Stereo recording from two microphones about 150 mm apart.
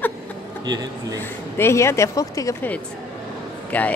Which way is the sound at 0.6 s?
25° right (ahead or behind).